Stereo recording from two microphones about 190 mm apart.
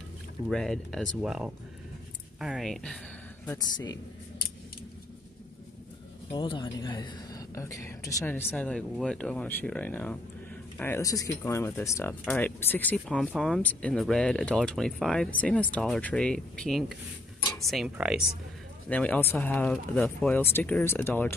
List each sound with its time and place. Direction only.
0.5 s speech: 5° left (ahead or behind)
3.5 s a woman's voice: 20° left (ahead or behind)
6.3 s speech: 25° left (ahead or behind); by 18.2 s 5° right (ahead or behind)
18.9 s speech: 5° left (ahead or behind)